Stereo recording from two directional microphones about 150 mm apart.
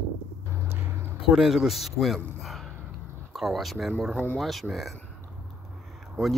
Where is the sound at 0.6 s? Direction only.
15° right (ahead or behind).